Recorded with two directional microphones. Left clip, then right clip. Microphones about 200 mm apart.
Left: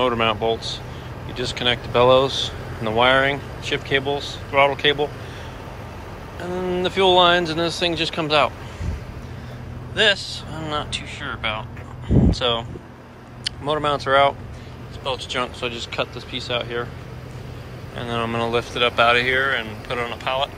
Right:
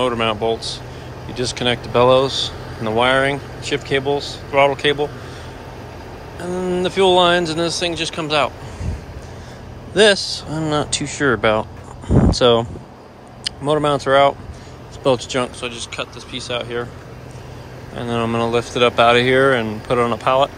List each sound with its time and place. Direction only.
0.0 s speech: 20° right (ahead or behind)
6.4 s speech: 20° right (ahead or behind)
9.9 s speech: 30° right (ahead or behind)
15.0 s speech: 35° right (ahead or behind)
15.4 s speech: 15° right (ahead or behind)
17.9 s speech: 25° right (ahead or behind)